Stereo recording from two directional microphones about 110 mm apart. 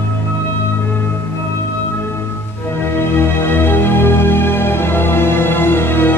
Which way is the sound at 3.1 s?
20° left (ahead or behind).